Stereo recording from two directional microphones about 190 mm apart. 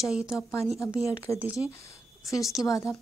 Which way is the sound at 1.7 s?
15° left (ahead or behind).